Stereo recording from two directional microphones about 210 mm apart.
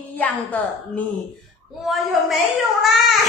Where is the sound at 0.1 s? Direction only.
5° left (ahead or behind).